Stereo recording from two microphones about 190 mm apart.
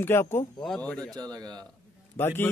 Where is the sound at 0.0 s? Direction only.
10° left (ahead or behind).